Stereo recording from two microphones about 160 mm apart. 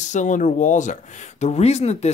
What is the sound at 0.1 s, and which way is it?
Speech, 50° left (ahead or behind).